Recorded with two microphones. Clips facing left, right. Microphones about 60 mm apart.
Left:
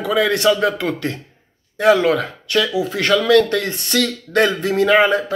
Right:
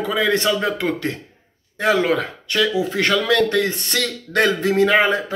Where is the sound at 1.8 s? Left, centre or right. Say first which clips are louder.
Left 4 dB; right.